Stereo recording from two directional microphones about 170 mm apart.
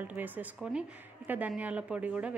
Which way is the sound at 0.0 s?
10° right (ahead or behind).